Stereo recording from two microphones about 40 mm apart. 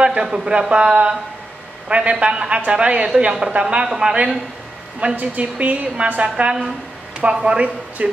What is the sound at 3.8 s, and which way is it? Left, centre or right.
Speech, centre.